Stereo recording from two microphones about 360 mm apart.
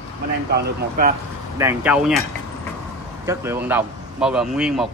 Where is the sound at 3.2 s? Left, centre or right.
Centre.